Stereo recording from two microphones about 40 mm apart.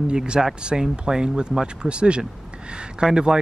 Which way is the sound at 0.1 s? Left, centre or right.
Centre.